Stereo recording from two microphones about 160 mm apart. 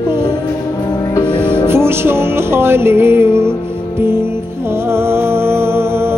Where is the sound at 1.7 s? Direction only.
15° right (ahead or behind).